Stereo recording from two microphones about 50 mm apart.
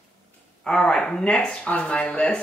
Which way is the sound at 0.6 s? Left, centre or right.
Centre.